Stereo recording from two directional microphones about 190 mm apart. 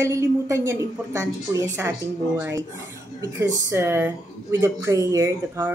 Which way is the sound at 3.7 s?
10° right (ahead or behind).